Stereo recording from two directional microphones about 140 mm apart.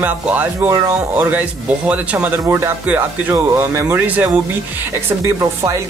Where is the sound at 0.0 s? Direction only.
15° right (ahead or behind).